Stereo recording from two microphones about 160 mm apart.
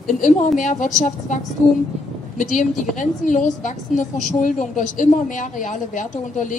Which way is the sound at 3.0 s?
50° left (ahead or behind).